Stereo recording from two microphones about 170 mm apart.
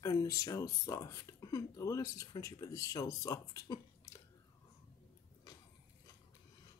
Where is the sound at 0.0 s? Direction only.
20° left (ahead or behind).